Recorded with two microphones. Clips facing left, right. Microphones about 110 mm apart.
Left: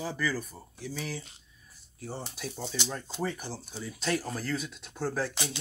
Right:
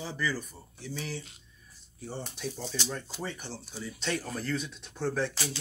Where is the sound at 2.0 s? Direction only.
5° left (ahead or behind).